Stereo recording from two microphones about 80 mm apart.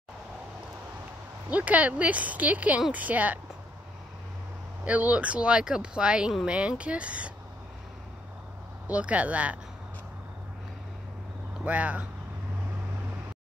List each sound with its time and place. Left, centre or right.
1.5 s speech: centre
4.8 s speech: centre
8.8 s speech: centre
11.6 s speech: centre